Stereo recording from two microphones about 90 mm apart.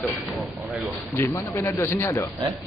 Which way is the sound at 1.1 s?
30° left (ahead or behind).